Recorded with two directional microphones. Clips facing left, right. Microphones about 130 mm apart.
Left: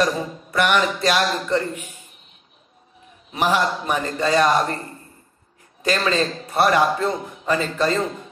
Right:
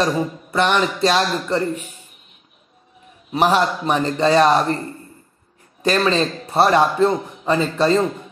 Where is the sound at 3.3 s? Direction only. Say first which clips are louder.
Right 3 dB; 30° right (ahead or behind).